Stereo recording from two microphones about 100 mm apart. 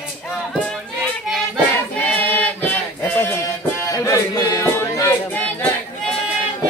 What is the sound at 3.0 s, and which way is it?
Music, 20° left (ahead or behind).